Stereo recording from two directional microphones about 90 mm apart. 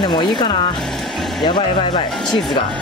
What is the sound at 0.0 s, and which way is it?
Speech, 60° left (ahead or behind).